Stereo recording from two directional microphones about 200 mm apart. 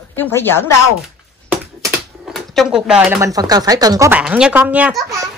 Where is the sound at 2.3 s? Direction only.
Centre (ahead or behind); by 4.2 s 15° right (ahead or behind).